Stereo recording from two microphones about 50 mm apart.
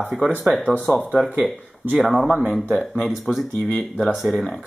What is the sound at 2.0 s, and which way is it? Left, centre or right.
Speech, centre.